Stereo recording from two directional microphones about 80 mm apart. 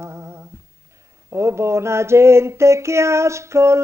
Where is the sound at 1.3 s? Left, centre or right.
Right.